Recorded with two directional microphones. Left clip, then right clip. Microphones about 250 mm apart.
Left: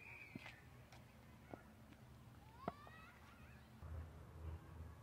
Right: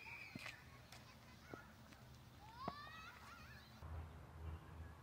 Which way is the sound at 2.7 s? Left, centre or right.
Left.